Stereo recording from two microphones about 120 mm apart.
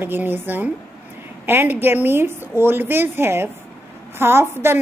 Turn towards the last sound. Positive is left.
turn(degrees=-20)  # may be behind; listen again after turning